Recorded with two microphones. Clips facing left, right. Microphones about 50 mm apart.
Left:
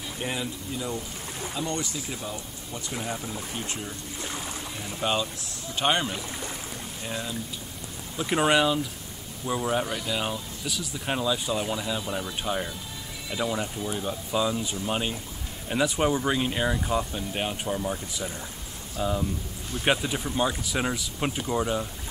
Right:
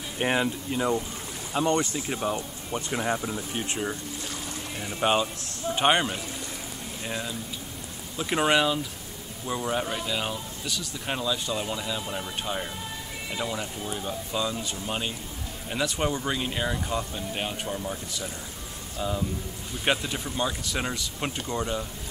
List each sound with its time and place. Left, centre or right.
0.2 s speech: right
2.9 s speech: right
4.2 s boat: left
4.8 s speech: right; by 21.8 s centre